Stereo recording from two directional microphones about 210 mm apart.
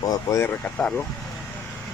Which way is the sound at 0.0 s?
15° left (ahead or behind).